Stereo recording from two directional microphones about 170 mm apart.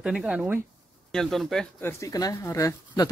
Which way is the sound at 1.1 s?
Centre (ahead or behind).